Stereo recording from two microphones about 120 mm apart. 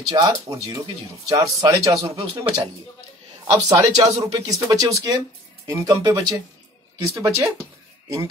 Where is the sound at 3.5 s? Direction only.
30° right (ahead or behind).